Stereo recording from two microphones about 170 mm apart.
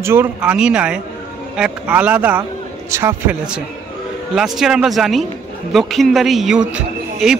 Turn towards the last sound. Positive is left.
turn(degrees=-5)  # may be behind; listen again after turning